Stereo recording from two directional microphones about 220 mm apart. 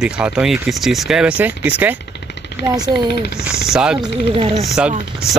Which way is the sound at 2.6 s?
50° left (ahead or behind).